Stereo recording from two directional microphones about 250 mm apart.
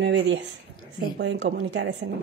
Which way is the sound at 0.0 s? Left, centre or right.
Right.